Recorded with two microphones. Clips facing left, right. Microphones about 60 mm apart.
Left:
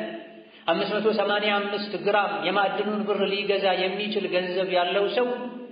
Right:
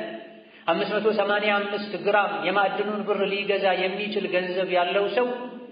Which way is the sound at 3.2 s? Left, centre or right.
Right.